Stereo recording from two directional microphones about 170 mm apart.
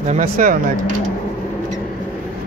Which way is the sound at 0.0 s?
45° right (ahead or behind).